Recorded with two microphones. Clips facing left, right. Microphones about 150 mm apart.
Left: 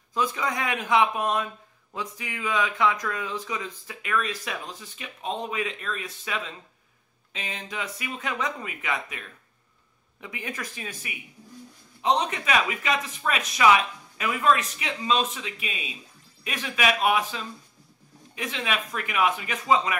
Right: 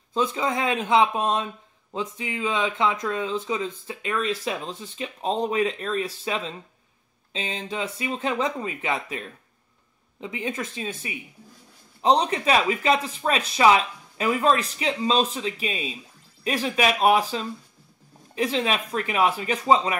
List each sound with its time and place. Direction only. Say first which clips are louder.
0.1 s speech: right 3 dB; 25° right (ahead or behind)